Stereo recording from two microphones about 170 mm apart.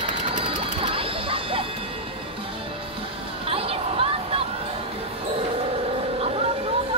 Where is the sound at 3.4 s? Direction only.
35° right (ahead or behind).